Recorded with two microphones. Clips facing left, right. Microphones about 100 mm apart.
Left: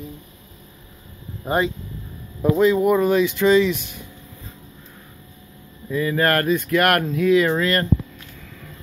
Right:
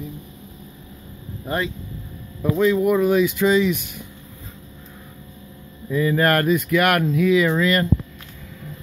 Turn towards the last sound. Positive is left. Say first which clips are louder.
# even
turn(degrees=-5)  # may be behind; listen again after turning